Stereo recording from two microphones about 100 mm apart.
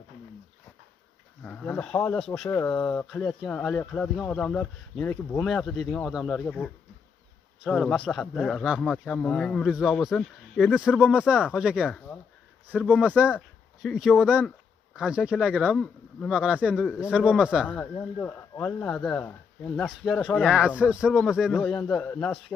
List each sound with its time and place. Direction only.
1.4 s speech: 10° left (ahead or behind)
3.1 s speech: 5° left (ahead or behind)
7.7 s speech: 5° left (ahead or behind)
10.7 s speech: 5° right (ahead or behind)
13.0 s speech: 15° right (ahead or behind)
13.8 s speech: 5° right (ahead or behind)
17.6 s speech: 15° left (ahead or behind)
18.9 s speech: 10° left (ahead or behind)
20.1 s speech: centre (ahead or behind)
21.5 s speech: 10° left (ahead or behind)
22.0 s speech: 20° left (ahead or behind)